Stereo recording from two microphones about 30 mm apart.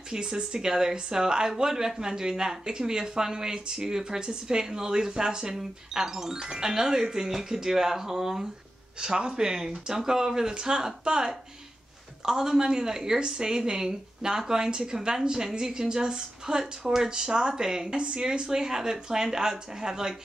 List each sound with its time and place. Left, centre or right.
0.1 s speech: right
9.0 s speech: right
17.1 s speech: right
17.9 s speech: right
18.5 s speech: centre